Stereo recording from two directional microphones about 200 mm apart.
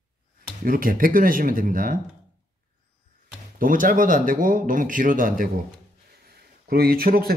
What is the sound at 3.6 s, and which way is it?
Speech, 45° right (ahead or behind).